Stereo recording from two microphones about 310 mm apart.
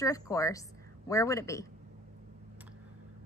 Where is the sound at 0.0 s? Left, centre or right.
Centre.